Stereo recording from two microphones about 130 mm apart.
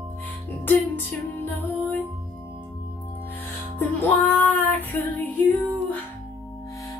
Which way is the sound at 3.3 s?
15° left (ahead or behind).